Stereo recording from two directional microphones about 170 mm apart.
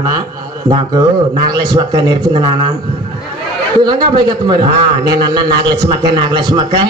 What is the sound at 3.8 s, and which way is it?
A man's voice, 25° right (ahead or behind).